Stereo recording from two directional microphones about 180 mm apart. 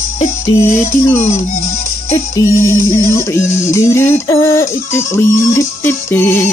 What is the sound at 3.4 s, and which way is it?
Music, 40° left (ahead or behind).